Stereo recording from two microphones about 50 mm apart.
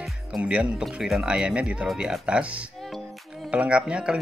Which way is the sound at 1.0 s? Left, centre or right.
Centre.